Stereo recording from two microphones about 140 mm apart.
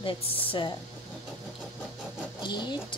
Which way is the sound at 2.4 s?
30° left (ahead or behind).